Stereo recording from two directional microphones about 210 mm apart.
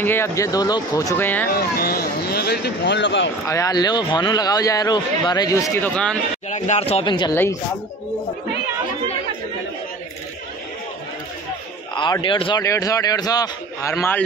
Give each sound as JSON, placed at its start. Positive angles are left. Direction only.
{"t": 0.0, "sound": "speech", "side_deg": 10}
{"t": 1.5, "sound": "speech", "side_deg": 45}
{"t": 3.4, "sound": "speech", "side_deg": 15}
{"t": 6.5, "sound": "speech", "side_deg": 30}
{"t": 11.9, "sound": "speech", "side_deg": 20}